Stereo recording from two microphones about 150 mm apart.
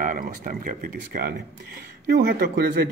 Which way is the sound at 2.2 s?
85° right.